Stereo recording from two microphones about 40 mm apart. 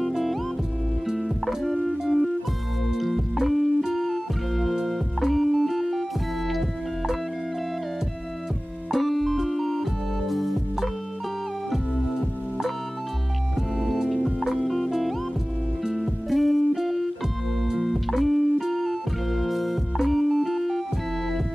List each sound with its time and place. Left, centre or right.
1.1 s music: centre
8.9 s music: centre